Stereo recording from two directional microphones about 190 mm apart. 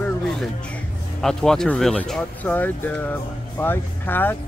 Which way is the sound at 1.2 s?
5° left (ahead or behind).